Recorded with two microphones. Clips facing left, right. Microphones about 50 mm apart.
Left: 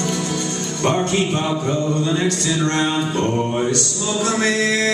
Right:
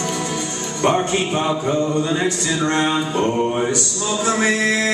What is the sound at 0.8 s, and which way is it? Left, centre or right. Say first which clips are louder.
Music: right 1 dB; centre.